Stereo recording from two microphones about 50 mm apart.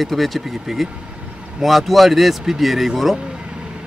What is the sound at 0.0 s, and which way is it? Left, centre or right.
A man's voice, centre.